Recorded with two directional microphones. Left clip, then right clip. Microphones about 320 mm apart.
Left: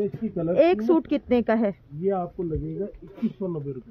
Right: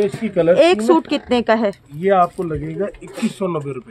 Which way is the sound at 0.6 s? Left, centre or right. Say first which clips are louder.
Right 2 dB; centre.